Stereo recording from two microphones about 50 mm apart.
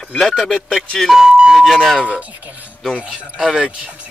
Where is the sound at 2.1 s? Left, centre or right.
Right.